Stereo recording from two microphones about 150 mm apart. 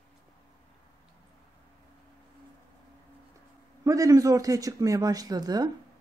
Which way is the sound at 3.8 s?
20° right (ahead or behind).